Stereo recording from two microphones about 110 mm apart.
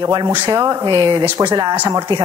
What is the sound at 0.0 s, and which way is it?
A woman's voice, 40° right (ahead or behind).